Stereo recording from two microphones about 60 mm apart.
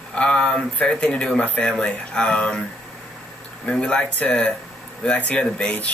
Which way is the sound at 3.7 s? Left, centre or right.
Centre.